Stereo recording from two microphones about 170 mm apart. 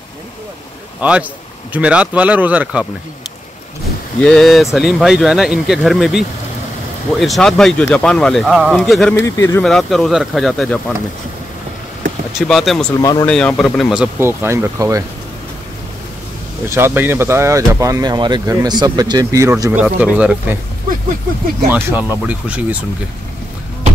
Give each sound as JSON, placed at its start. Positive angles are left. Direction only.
{"t": 1.0, "sound": "speech", "side_deg": -10}
{"t": 4.2, "sound": "speech", "side_deg": 0}
{"t": 9.1, "sound": "speech", "side_deg": 15}
{"t": 9.6, "sound": "speech", "side_deg": 0}
{"t": 12.4, "sound": "speech", "side_deg": 0}
{"t": 14.1, "sound": "speech", "side_deg": -15}
{"t": 16.6, "sound": "speech", "side_deg": -15}
{"t": 21.6, "sound": "speech", "side_deg": -10}